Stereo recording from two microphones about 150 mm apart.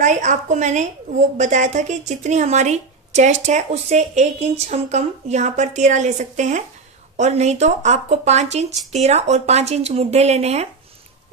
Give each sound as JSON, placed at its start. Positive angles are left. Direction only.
{"t": 0.0, "sound": "speech", "side_deg": -55}